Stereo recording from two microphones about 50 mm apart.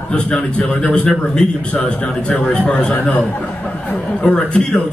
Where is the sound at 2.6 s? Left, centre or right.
Centre.